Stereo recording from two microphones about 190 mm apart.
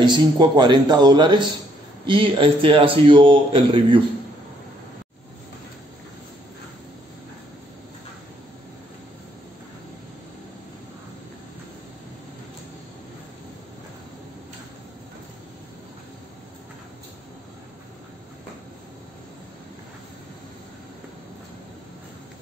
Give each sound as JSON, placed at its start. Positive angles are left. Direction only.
{"t": 0.0, "sound": "a man's voice", "side_deg": -25}